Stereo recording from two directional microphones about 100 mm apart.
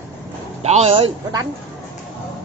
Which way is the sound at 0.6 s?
85° right.